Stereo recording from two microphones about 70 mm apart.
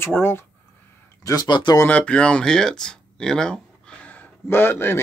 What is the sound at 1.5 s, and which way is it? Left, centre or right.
Speech, left.